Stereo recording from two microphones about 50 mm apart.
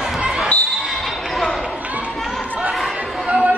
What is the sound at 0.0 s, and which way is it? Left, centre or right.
Basketball bounce, centre.